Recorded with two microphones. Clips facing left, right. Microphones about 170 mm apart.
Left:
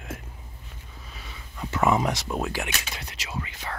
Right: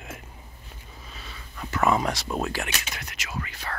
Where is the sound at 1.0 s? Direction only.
10° left (ahead or behind).